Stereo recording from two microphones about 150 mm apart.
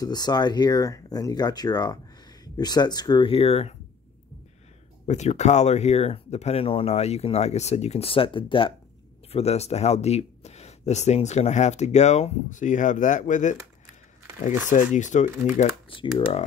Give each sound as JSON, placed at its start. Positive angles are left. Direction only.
{"t": 0.0, "sound": "speech", "side_deg": 25}
{"t": 5.0, "sound": "speech", "side_deg": 50}